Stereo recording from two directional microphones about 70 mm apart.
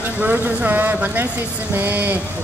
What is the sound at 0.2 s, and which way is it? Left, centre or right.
Speech, right.